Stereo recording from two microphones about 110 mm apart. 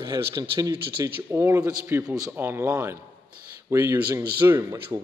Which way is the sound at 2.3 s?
20° right (ahead or behind).